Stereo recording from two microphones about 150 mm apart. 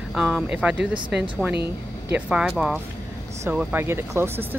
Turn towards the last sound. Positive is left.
turn(degrees=-15)  # may be behind; listen again after turning